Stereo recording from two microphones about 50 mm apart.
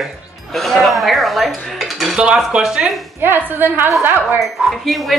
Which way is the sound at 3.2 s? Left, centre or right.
Right.